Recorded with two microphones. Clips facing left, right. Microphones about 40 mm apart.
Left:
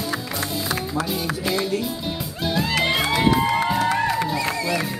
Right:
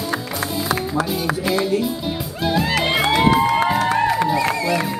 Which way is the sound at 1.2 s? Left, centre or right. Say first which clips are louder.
Right 4 dB; centre.